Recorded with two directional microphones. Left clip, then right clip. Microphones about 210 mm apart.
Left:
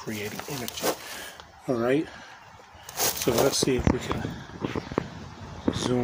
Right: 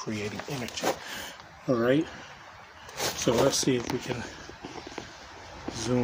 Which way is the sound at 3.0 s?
60° left (ahead or behind).